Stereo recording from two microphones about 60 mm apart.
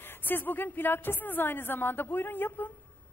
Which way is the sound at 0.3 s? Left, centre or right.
Left.